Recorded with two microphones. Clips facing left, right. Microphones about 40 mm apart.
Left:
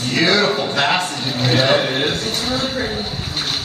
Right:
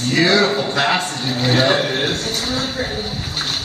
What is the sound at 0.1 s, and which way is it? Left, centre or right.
A man's voice, centre.